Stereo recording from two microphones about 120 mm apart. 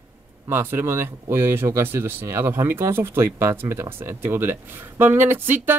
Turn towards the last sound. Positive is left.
turn(degrees=-15)  # may be behind; listen again after turning